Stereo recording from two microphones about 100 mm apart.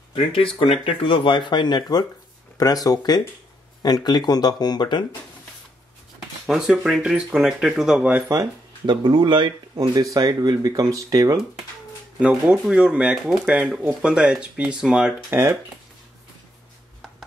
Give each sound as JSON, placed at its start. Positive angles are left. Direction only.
{"t": 0.1, "sound": "speech", "side_deg": 60}
{"t": 6.4, "sound": "speech", "side_deg": -5}
{"t": 8.8, "sound": "speech", "side_deg": -50}
{"t": 10.1, "sound": "speech", "side_deg": -40}
{"t": 12.2, "sound": "speech", "side_deg": -10}
{"t": 15.2, "sound": "speech", "side_deg": -30}